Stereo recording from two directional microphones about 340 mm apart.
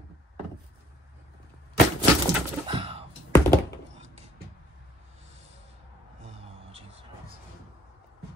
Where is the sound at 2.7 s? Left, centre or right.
Centre.